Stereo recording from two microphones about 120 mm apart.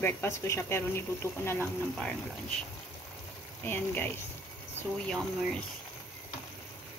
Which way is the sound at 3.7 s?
15° left (ahead or behind).